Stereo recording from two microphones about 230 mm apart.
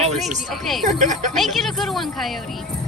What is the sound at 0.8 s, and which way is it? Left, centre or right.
Speech, right.